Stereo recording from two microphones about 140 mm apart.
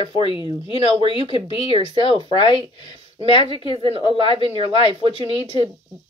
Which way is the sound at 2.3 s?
35° left (ahead or behind).